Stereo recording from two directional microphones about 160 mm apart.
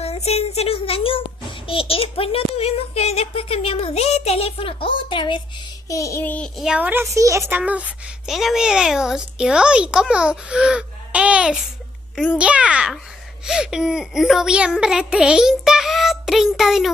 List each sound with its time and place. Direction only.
0.0 s a child's voice: 40° left (ahead or behind)
1.7 s a sound: 35° left (ahead or behind)
5.9 s child singing: 20° left (ahead or behind)
6.6 s a woman's voice: 10° right (ahead or behind)